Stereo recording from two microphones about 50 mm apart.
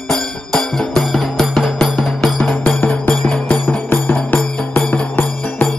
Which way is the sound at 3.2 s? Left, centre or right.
Centre.